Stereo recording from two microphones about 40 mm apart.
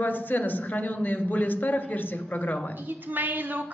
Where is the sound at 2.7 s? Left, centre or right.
Right.